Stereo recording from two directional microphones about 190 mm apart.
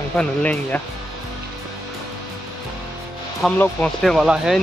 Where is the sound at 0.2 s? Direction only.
10° left (ahead or behind).